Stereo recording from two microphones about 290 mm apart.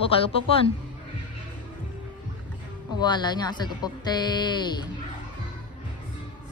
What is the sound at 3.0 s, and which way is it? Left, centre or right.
Speech, centre.